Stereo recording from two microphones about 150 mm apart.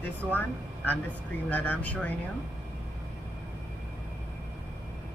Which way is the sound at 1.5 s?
10° left (ahead or behind).